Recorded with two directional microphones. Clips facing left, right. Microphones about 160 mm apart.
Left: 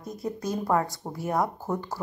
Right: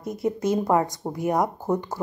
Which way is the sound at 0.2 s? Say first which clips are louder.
Right 7 dB; 25° right (ahead or behind).